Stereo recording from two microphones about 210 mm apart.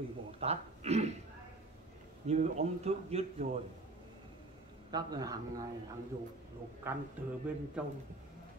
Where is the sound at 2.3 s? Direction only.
30° right (ahead or behind).